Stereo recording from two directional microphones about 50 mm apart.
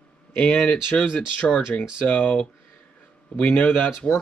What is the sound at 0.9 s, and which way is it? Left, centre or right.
Speech, left.